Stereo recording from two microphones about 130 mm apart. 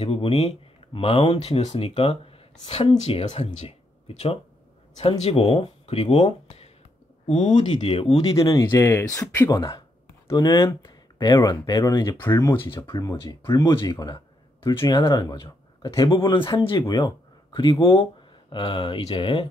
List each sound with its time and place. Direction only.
0.0 s speech: 50° left (ahead or behind)
5.2 s speech: 50° left (ahead or behind)
7.4 s speech: 35° left (ahead or behind)
8.4 s speech: 25° left (ahead or behind)
12.6 s speech: 40° left (ahead or behind)
12.9 s speech: 25° left (ahead or behind); by 19.4 s 40° left (ahead or behind)